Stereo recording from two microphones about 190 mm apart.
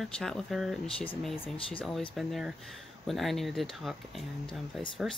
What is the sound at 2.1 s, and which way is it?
Speech, centre (ahead or behind).